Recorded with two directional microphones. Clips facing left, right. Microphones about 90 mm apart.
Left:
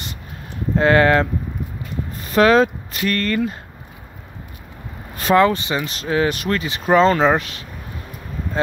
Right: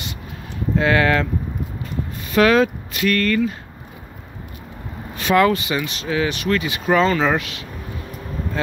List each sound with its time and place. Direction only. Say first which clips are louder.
0.7 s speech: left 3 dB; 40° left (ahead or behind)
5.1 s vehicle: left 2 dB; 40° left (ahead or behind)
5.4 s speech: left 1 dB; 30° left (ahead or behind)